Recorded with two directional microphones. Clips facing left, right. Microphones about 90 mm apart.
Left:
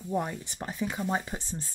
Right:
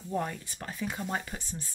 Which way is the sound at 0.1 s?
15° left (ahead or behind).